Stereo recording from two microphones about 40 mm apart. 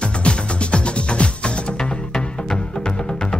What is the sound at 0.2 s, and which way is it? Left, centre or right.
Music, left.